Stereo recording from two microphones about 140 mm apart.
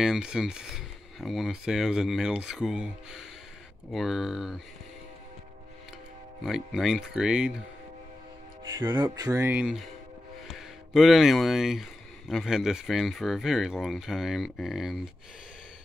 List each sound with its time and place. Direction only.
0.0 s speech: 5° right (ahead or behind)
6.4 s speech: centre (ahead or behind)
9.1 s speech: 25° right (ahead or behind); by 15.0 s centre (ahead or behind)